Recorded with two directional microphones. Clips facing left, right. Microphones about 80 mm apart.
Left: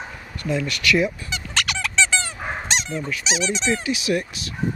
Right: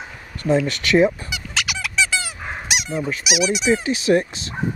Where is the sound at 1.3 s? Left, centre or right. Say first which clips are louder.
Even; centre.